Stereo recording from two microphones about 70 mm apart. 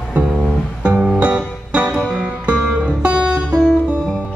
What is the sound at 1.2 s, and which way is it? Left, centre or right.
Music, centre.